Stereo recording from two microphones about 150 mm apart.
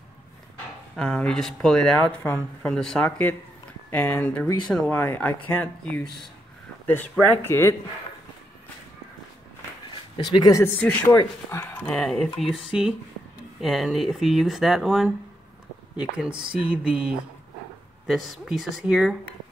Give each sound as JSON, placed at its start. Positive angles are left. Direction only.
{"t": 0.9, "sound": "speech", "side_deg": 5}
{"t": 7.4, "sound": "speech", "side_deg": 15}
{"t": 10.1, "sound": "speech", "side_deg": 30}
{"t": 10.8, "sound": "speech", "side_deg": 10}